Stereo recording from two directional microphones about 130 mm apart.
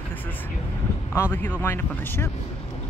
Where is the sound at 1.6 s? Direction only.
20° left (ahead or behind).